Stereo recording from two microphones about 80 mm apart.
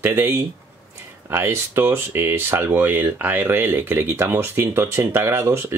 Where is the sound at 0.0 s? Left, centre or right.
Right.